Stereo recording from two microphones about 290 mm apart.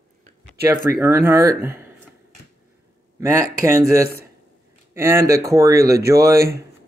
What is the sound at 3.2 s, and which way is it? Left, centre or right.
Speech, centre.